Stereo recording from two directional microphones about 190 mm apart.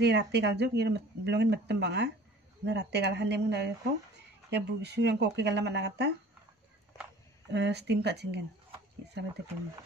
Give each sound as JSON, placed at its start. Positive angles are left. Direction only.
{"t": 0.0, "sound": "speech", "side_deg": -65}
{"t": 7.5, "sound": "speech", "side_deg": -60}